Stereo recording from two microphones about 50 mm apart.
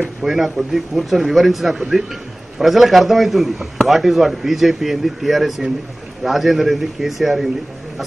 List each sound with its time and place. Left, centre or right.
0.2 s a man's voice: centre